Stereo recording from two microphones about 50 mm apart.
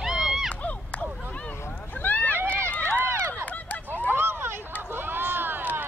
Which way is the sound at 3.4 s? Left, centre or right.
Left.